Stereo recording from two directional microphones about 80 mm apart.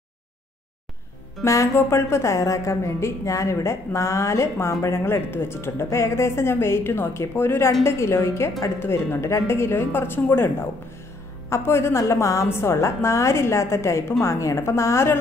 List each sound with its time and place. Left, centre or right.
1.4 s a woman's voice: left